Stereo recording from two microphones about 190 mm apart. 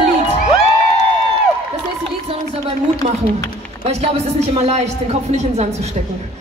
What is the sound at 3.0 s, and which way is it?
Speech, 35° right (ahead or behind).